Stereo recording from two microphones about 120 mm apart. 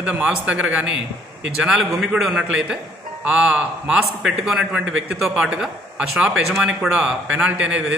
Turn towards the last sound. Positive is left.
turn(degrees=-10)  # may be behind; listen again after turning